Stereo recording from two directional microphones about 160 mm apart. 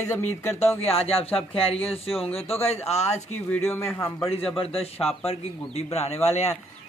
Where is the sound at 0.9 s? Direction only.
40° left (ahead or behind).